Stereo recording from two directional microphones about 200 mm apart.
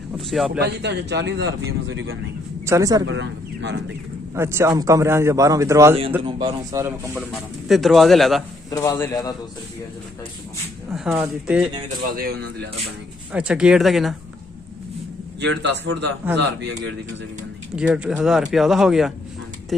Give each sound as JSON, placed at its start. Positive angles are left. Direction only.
{"t": 0.6, "sound": "speech", "side_deg": -55}
{"t": 2.6, "sound": "speech", "side_deg": -15}
{"t": 3.1, "sound": "speech", "side_deg": -65}
{"t": 4.4, "sound": "a man's voice", "side_deg": -15}
{"t": 6.2, "sound": "speech", "side_deg": -25}
{"t": 6.7, "sound": "a man's voice", "side_deg": -15}
{"t": 7.2, "sound": "speech", "side_deg": 0}
{"t": 8.6, "sound": "a man's voice", "side_deg": 15}
{"t": 11.1, "sound": "speech", "side_deg": -5}
{"t": 12.1, "sound": "speech", "side_deg": -50}
{"t": 13.3, "sound": "speech", "side_deg": -5}
{"t": 15.4, "sound": "speech", "side_deg": -60}
{"t": 17.7, "sound": "speech", "side_deg": -5}